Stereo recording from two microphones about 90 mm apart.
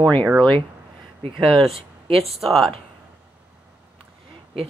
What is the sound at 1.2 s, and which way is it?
Speech, 80° right.